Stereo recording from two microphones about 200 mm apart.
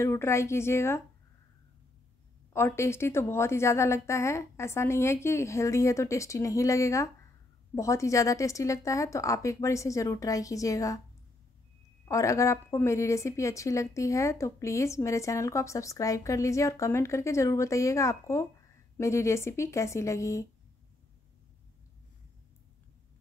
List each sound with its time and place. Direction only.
0.0 s speech: 15° left (ahead or behind)
2.5 s speech: 15° left (ahead or behind)
12.1 s speech: 15° left (ahead or behind)